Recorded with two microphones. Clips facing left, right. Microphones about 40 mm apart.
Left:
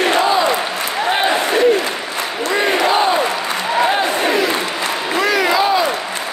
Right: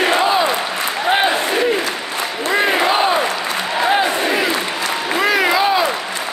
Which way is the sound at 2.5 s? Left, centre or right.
Centre.